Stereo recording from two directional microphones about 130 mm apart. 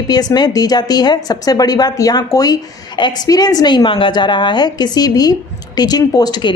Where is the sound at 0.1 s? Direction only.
30° left (ahead or behind).